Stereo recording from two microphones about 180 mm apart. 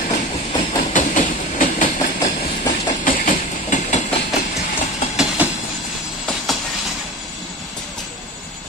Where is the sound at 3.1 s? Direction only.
45° left (ahead or behind).